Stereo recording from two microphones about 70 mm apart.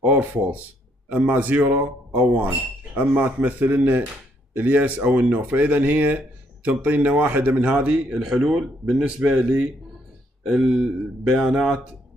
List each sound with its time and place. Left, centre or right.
0.0 s speech: right